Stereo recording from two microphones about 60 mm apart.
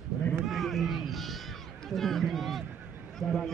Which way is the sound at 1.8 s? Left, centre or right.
Centre.